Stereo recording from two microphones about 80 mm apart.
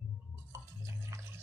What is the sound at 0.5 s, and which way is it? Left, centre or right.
Drip, right.